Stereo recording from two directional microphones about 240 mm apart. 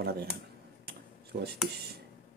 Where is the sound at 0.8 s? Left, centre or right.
Right.